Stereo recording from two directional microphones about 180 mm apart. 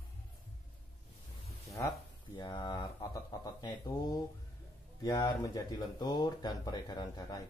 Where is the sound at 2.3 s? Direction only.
25° left (ahead or behind).